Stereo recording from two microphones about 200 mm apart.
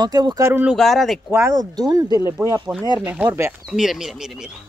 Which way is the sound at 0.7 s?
Centre (ahead or behind).